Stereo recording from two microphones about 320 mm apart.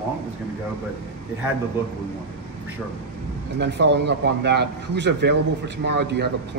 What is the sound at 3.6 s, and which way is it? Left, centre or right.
A man's voice, right.